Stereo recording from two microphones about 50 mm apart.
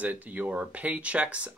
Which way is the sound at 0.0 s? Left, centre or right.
Right.